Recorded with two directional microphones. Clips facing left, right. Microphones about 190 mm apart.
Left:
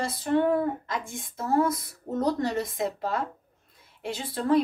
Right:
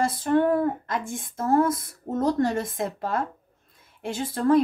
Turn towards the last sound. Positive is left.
turn(degrees=-50)  # may be behind; listen again after turning